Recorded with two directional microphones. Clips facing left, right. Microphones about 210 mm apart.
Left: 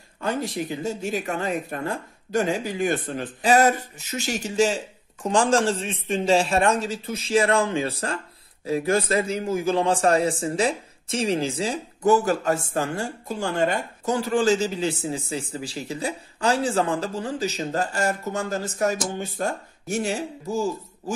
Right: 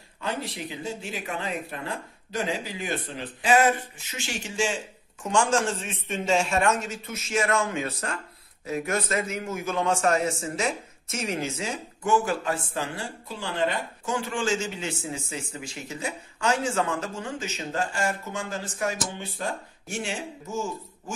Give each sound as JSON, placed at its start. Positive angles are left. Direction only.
{"t": 0.2, "sound": "a man's voice", "side_deg": 45}